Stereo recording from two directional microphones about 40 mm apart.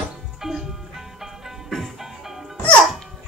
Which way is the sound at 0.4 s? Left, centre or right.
Centre.